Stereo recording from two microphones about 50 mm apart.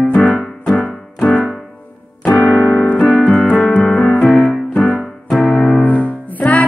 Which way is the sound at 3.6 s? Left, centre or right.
Centre.